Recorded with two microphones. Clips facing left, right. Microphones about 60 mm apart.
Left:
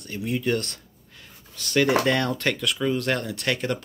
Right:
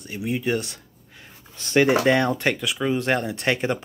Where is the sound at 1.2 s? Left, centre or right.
Right.